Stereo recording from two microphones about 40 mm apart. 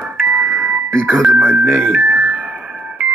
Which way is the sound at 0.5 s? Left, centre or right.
Right.